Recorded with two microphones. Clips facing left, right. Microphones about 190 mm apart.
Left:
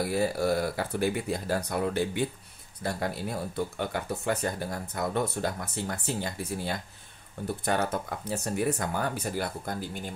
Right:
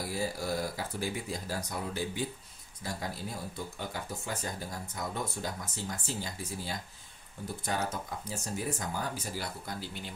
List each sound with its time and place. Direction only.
0.0 s speech: 65° left (ahead or behind)